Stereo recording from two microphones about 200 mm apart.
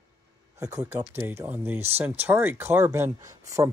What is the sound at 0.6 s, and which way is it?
Speech, 15° right (ahead or behind).